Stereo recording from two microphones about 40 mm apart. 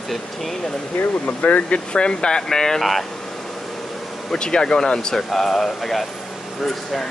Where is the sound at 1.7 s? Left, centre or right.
Left.